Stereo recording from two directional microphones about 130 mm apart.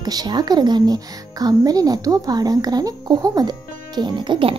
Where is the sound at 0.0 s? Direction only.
30° right (ahead or behind).